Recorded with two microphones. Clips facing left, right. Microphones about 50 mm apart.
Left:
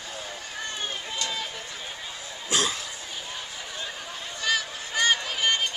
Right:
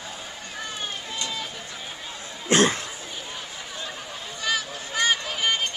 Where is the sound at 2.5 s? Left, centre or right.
Right.